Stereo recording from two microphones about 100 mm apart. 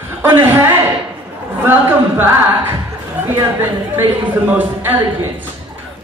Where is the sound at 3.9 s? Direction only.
20° right (ahead or behind).